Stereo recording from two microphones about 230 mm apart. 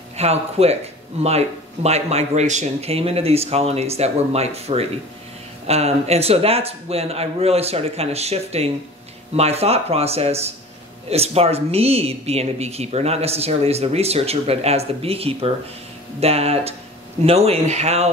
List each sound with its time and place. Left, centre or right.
0.2 s speech: right